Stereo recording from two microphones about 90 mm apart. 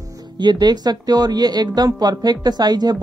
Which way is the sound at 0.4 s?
50° right (ahead or behind).